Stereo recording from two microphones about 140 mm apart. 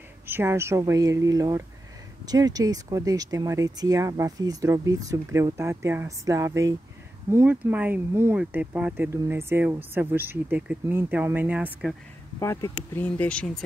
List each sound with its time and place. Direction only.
0.3 s speech: 15° right (ahead or behind)
12.4 s speech: 25° left (ahead or behind)
12.9 s speech: 10° left (ahead or behind)